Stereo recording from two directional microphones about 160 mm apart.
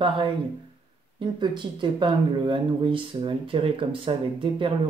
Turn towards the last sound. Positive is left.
turn(degrees=-35)  # may be behind; listen again after turning